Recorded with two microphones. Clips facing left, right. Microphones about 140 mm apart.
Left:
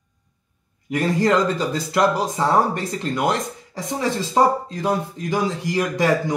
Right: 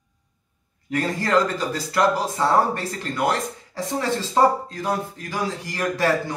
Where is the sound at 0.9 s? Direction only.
15° left (ahead or behind).